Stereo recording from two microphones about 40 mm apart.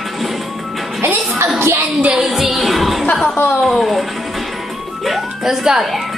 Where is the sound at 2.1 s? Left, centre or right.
Centre.